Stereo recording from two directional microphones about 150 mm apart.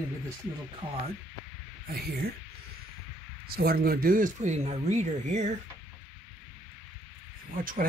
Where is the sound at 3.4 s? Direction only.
90° right; by 5.6 s 55° right (ahead or behind).